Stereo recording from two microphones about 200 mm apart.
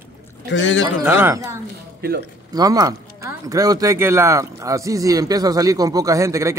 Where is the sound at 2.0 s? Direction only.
55° right (ahead or behind).